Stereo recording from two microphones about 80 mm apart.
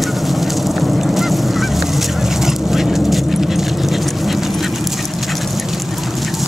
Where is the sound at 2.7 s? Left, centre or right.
Centre.